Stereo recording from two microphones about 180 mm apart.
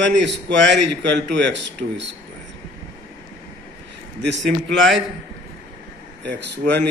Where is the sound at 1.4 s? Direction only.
80° right.